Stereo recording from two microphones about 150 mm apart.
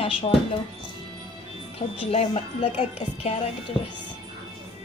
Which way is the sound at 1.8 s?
40° left (ahead or behind).